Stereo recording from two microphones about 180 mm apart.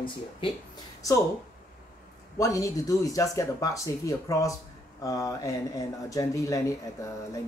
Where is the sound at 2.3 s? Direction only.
20° left (ahead or behind).